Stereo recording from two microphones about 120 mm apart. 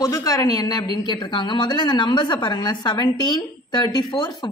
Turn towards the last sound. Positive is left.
turn(degrees=35)  # may be behind; listen again after turning